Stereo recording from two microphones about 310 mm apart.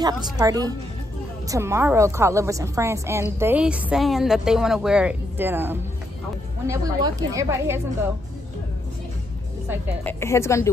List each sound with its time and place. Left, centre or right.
0.0 s a woman's voice: centre
10.0 s speech: centre